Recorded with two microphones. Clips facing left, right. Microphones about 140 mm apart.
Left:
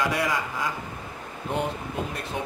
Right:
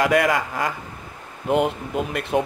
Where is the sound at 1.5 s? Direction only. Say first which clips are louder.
Right 8 dB; 75° right (ahead or behind).